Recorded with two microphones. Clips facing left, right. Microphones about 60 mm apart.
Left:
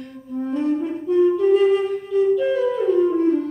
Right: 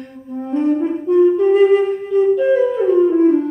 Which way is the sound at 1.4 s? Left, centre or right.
Right.